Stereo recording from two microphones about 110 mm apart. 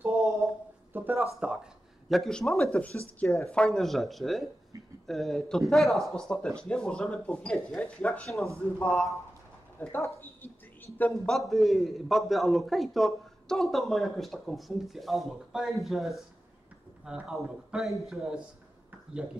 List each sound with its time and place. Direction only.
0.9 s a sound: 20° right (ahead or behind)
1.3 s a man's voice: 5° right (ahead or behind); by 9.1 s 10° left (ahead or behind)
9.8 s speech: 20° left (ahead or behind)
11.3 s a man's voice: centre (ahead or behind)